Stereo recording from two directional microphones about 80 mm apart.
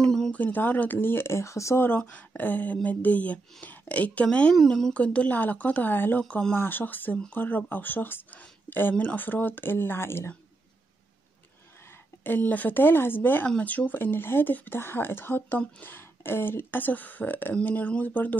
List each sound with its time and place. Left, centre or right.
0.0 s a sound: centre
0.3 s speech: left
1.9 s speech: centre
4.9 s speech: centre
12.2 s speech: left